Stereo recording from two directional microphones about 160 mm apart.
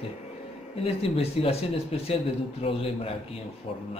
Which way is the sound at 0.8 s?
35° left (ahead or behind).